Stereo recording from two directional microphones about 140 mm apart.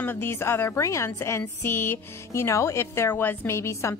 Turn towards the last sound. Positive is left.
turn(degrees=20)  # may be behind; listen again after turning